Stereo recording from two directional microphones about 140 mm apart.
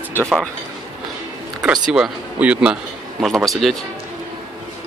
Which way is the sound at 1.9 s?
5° right (ahead or behind).